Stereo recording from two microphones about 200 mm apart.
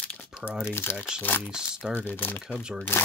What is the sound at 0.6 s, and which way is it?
Speech, 10° left (ahead or behind).